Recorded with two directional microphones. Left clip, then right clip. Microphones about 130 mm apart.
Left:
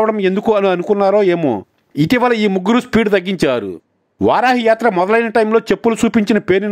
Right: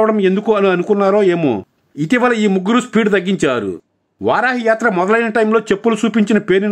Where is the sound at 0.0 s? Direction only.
35° left (ahead or behind).